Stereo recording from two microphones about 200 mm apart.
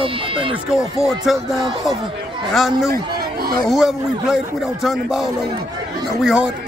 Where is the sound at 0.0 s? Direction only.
25° right (ahead or behind).